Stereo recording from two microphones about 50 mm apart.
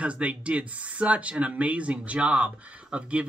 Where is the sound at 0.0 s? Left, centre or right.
Right.